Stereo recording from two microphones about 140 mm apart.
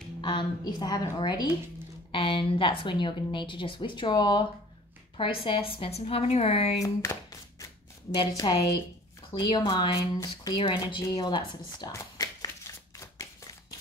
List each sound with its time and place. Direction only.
0.2 s a woman's voice: 35° left (ahead or behind)
6.8 s chopping: 20° left (ahead or behind)
8.3 s a woman's voice: 30° left (ahead or behind)
11.9 s clapping: 25° left (ahead or behind)
13.0 s a sound: 20° left (ahead or behind)